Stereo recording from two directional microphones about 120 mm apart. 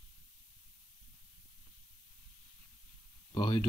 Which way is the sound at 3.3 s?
40° left (ahead or behind).